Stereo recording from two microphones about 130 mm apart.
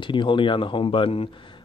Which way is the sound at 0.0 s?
40° left (ahead or behind).